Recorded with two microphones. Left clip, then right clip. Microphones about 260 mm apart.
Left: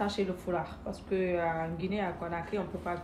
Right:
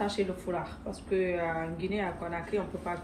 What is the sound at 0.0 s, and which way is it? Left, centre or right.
Speech, centre.